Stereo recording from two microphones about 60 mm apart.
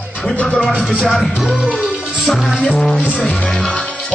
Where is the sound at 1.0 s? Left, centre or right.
Centre.